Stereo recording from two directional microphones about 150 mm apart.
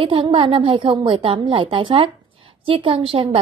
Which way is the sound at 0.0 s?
35° right (ahead or behind).